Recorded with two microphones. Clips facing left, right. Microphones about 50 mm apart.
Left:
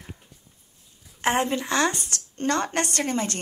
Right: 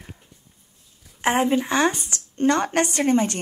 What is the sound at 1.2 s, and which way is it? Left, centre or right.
Speech, centre.